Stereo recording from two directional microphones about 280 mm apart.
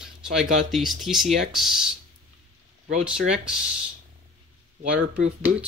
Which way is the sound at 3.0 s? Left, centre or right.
Centre.